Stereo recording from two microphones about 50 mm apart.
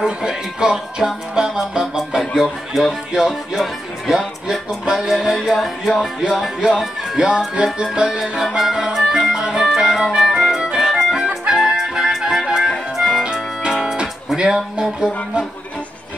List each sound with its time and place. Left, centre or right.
0.0 s speech: centre
1.3 s music: centre
4.1 s speech: centre
4.9 s music: centre
5.5 s music: centre
6.6 s speech: centre
7.2 s music: centre
10.8 s music: centre
13.8 s speech: centre